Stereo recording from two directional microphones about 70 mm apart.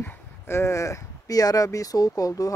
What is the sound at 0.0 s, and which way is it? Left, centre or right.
Speech, left.